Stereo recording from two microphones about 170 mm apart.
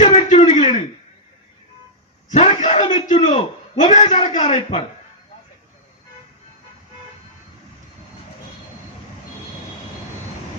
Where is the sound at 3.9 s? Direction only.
40° left (ahead or behind).